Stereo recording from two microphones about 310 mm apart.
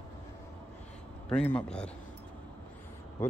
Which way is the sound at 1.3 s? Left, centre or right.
Centre.